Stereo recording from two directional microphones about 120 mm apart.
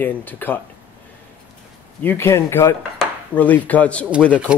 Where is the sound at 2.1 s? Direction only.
20° left (ahead or behind).